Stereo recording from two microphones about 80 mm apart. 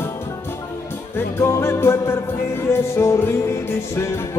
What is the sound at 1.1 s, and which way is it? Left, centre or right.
Music, left.